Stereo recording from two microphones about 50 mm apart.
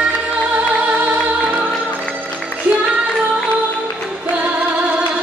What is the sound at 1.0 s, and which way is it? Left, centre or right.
Music, right.